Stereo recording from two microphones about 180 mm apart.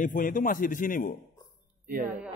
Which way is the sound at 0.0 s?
50° left (ahead or behind).